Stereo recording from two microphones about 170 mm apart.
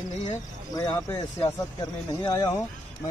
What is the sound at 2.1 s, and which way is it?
Speech, 20° left (ahead or behind).